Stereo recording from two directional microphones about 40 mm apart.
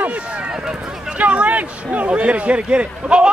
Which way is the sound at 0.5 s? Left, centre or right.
Centre.